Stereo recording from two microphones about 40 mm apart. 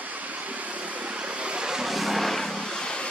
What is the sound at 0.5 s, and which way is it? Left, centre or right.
Vehicle, right.